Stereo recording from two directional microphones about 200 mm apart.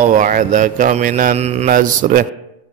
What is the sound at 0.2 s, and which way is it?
Mantra, 40° right (ahead or behind).